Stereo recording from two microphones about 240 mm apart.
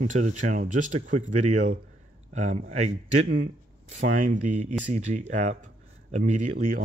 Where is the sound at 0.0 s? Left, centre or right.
Right.